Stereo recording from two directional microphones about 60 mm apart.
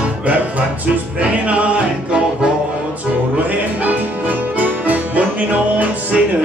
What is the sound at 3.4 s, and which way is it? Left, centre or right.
Music, right.